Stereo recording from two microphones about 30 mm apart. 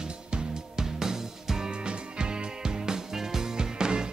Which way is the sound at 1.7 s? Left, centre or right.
Right.